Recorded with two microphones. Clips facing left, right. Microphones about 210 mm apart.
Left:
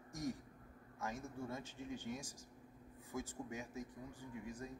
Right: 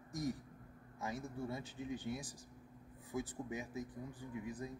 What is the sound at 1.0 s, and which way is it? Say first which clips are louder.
Speech: right 3 dB; 15° right (ahead or behind).